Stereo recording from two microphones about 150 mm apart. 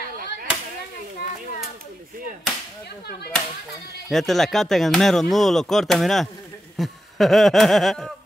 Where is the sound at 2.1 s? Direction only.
70° right (ahead or behind).